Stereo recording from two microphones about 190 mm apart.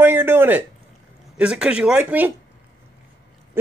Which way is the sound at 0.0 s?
10° right (ahead or behind).